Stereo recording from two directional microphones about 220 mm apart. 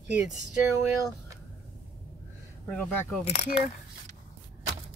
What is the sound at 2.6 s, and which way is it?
Speech, 5° left (ahead or behind).